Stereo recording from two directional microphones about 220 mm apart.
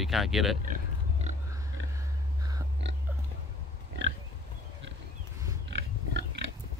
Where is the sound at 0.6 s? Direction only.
35° right (ahead or behind).